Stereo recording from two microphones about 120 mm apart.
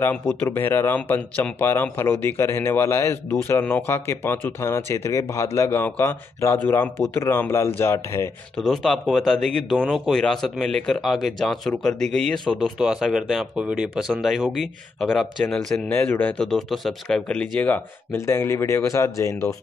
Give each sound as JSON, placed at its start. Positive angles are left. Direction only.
{"t": 0.0, "sound": "speech", "side_deg": 15}
{"t": 8.5, "sound": "speech", "side_deg": 0}
{"t": 15.9, "sound": "speech", "side_deg": 15}